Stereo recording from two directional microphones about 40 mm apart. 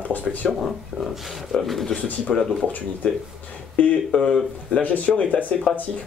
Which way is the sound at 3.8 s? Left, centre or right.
Left.